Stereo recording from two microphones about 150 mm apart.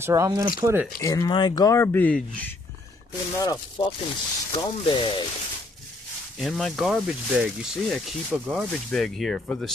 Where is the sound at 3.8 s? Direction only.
35° left (ahead or behind).